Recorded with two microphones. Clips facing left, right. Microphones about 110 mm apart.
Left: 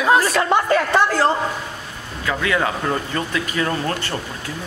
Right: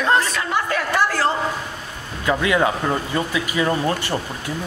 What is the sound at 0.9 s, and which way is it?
Speech, 20° left (ahead or behind).